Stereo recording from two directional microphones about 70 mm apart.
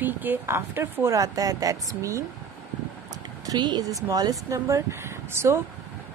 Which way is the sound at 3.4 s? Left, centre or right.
Right.